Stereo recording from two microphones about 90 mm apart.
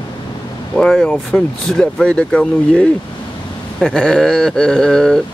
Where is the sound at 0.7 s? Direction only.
10° left (ahead or behind).